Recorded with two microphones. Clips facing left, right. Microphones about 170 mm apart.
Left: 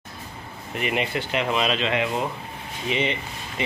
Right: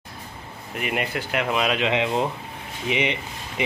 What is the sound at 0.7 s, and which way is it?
Speech, 5° right (ahead or behind).